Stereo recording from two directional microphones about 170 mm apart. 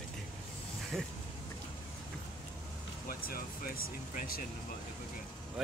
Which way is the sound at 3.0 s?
60° left (ahead or behind).